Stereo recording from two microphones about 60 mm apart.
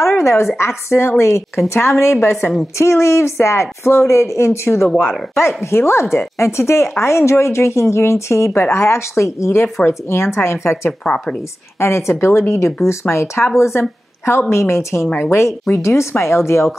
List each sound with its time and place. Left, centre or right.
0.0 s a sound: left
0.6 s speech: left
10.9 s speech: centre
11.8 s a woman's voice: left